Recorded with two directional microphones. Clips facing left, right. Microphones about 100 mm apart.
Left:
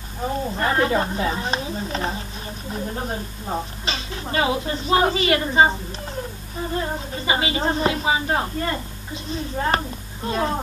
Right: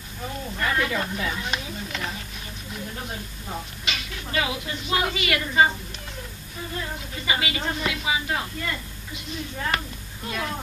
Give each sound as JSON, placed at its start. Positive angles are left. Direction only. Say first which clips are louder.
{"t": 0.2, "sound": "speech", "louder": "left 6 dB", "side_deg": 35}